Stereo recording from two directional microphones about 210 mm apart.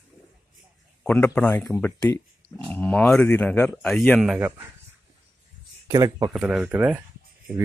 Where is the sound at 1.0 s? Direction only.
5° left (ahead or behind).